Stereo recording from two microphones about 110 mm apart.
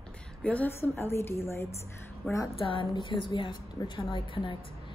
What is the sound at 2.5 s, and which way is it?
A woman's voice, 55° left (ahead or behind).